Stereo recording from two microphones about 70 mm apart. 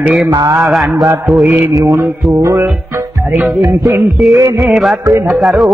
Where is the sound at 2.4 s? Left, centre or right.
Right.